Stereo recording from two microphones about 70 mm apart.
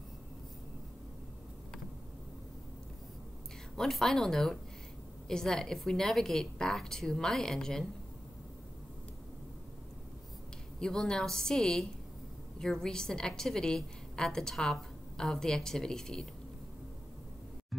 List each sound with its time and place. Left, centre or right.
3.7 s a woman's voice: centre
10.8 s a woman's voice: centre